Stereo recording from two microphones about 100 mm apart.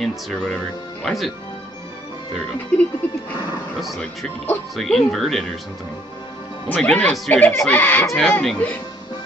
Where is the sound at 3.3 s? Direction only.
45° left (ahead or behind).